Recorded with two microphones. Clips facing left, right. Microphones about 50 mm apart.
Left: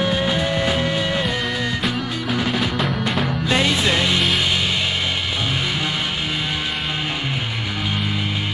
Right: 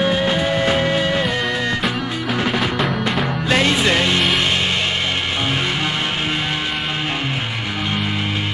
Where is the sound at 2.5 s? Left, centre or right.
Centre.